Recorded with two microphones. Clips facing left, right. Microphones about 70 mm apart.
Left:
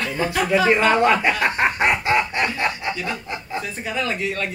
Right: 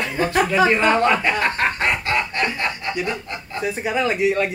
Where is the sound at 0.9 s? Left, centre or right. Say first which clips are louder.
Left 1 dB; centre.